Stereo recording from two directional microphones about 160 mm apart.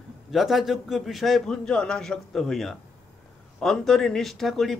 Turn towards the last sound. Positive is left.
turn(degrees=0)  # may be behind; listen again after turning